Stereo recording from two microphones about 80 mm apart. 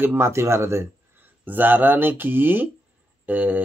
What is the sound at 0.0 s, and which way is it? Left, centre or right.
Speech, right.